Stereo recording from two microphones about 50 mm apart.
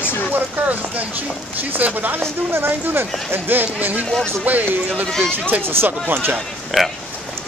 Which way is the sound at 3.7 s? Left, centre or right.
Right.